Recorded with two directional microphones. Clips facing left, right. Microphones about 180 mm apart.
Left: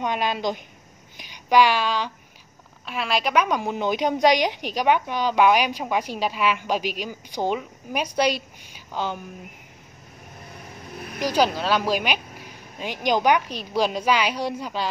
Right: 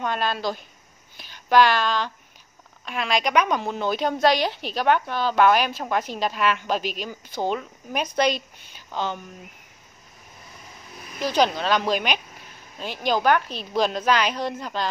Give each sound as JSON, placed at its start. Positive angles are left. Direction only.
{"t": 0.0, "sound": "a woman's voice", "side_deg": 15}
{"t": 11.1, "sound": "a woman's voice", "side_deg": 10}